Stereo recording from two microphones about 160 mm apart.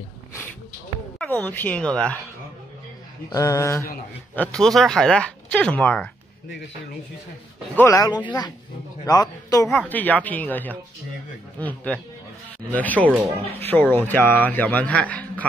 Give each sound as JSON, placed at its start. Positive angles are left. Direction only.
{"t": 1.2, "sound": "a man's voice", "side_deg": 10}
{"t": 3.3, "sound": "a man's voice", "side_deg": 20}
{"t": 4.4, "sound": "speech", "side_deg": 5}
{"t": 7.7, "sound": "a man's voice", "side_deg": 15}
{"t": 9.7, "sound": "a man's voice", "side_deg": 10}